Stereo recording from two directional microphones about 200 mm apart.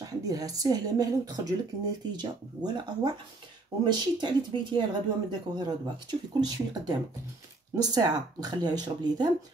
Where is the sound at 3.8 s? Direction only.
20° right (ahead or behind).